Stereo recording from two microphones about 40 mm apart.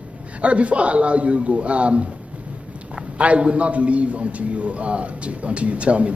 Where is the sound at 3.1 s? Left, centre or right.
Right.